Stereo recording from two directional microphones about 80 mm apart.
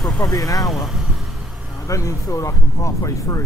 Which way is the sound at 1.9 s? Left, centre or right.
Left.